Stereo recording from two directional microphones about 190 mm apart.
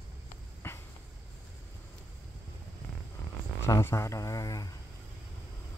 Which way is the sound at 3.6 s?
15° left (ahead or behind).